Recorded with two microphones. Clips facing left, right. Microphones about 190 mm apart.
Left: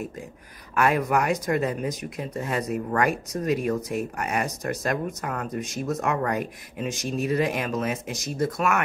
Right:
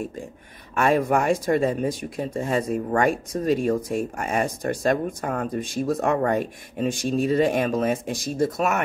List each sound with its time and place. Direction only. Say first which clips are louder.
0.7 s speech: right 2 dB; 30° right (ahead or behind)